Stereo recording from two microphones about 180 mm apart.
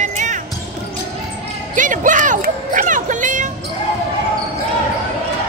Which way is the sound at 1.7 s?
45° right (ahead or behind).